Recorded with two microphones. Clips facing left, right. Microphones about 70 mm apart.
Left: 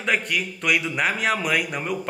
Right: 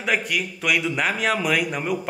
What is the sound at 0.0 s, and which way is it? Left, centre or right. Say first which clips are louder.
Speech: even; centre.